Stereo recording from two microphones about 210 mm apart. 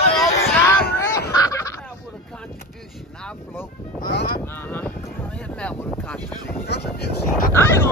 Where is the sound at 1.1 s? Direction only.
15° left (ahead or behind).